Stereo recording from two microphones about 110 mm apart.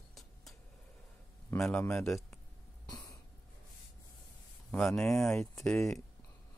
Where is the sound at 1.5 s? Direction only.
5° left (ahead or behind).